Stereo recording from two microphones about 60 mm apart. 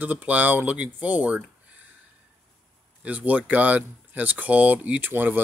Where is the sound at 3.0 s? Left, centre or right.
Right.